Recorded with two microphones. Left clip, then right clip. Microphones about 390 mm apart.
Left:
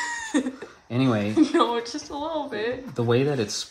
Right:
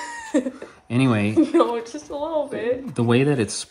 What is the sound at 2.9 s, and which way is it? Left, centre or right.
Speech, centre.